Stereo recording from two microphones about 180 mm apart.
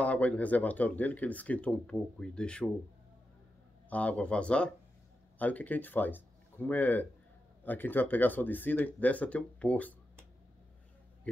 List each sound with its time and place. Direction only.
0.0 s speech: 10° left (ahead or behind)
3.9 s speech: 10° left (ahead or behind)